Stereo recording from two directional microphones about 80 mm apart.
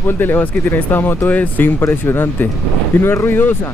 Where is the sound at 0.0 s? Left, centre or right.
Left.